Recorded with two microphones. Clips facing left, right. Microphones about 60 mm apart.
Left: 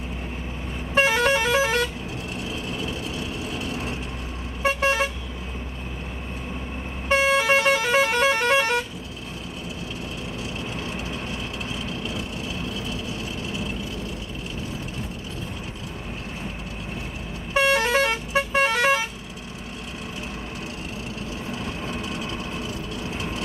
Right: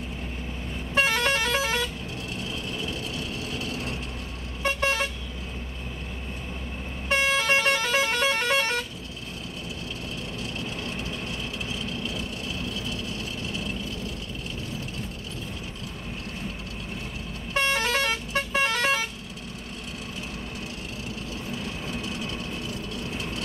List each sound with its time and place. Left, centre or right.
0.9 s vehicle: centre
4.7 s vehicle: centre
7.1 s vehicle horn: centre
10.6 s vehicle: centre
17.6 s vehicle: centre
21.5 s vehicle: centre